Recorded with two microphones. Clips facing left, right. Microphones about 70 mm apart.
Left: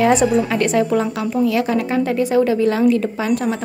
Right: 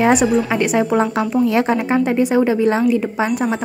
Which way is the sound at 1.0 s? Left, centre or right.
Right.